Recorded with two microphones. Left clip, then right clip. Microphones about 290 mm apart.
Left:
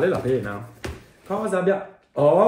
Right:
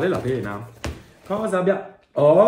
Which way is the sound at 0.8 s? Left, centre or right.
Centre.